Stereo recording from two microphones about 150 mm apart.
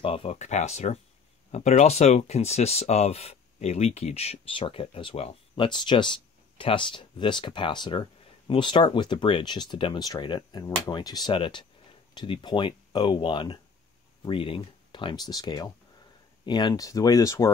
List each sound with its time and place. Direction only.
0.0 s speech: 40° left (ahead or behind); by 17.5 s 20° left (ahead or behind)